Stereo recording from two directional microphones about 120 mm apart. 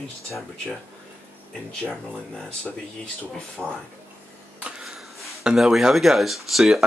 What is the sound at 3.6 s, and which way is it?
Speech, 15° right (ahead or behind).